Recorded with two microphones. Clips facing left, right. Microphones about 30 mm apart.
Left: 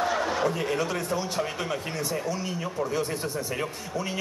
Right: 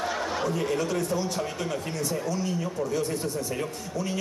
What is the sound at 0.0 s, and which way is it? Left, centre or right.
Speech, centre.